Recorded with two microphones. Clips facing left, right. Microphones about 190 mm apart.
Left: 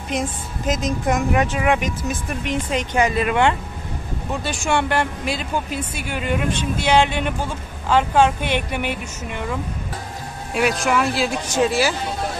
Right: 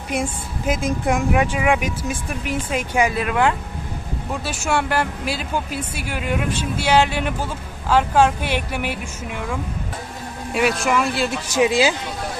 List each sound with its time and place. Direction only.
0.1 s a woman's voice: 10° right (ahead or behind)
10.5 s speech: centre (ahead or behind)
11.6 s a woman's voice: 15° right (ahead or behind)